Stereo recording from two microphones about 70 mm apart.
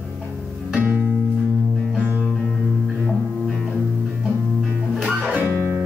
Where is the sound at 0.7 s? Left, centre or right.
Centre.